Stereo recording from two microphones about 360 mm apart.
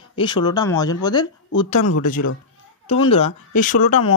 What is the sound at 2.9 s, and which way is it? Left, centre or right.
Speech, centre.